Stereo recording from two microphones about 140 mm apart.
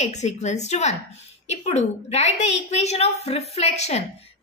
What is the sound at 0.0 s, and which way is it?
A woman's voice, 55° left (ahead or behind).